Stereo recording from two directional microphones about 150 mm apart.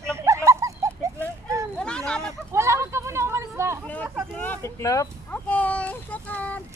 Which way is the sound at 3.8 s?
10° left (ahead or behind).